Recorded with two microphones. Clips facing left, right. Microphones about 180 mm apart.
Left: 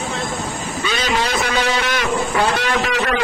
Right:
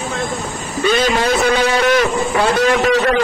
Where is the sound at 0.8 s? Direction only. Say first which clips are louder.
Right 7 dB; 50° right (ahead or behind).